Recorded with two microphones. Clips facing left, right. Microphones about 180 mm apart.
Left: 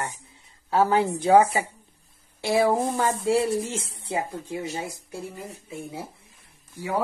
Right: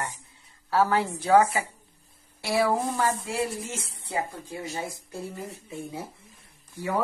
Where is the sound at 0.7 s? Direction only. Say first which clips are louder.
Left 3 dB; 20° left (ahead or behind).